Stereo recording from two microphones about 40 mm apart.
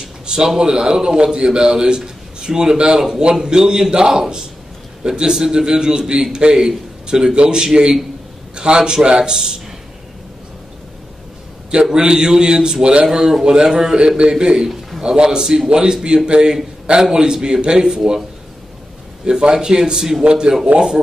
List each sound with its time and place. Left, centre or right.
0.6 s a man's voice: centre
11.8 s a man's voice: centre
13.9 s a man's voice: right
19.5 s a man's voice: centre